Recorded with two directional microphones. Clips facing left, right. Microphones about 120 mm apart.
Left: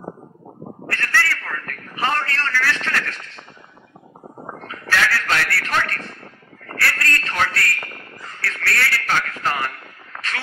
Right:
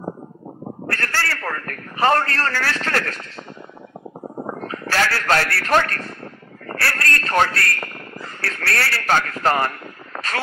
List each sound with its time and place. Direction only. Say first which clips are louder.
0.8 s a man's voice: left 1 dB; 40° right (ahead or behind)
4.6 s a man's voice: even; 40° right (ahead or behind)